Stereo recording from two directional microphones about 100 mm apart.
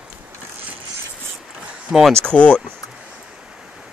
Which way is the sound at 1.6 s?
5° right (ahead or behind).